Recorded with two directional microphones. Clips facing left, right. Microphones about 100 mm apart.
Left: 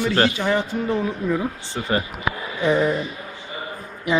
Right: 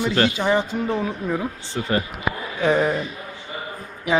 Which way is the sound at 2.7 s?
40° right (ahead or behind).